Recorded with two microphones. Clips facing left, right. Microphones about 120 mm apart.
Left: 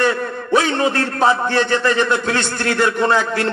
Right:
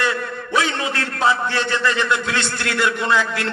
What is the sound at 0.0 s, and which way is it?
A man's voice, 45° left (ahead or behind).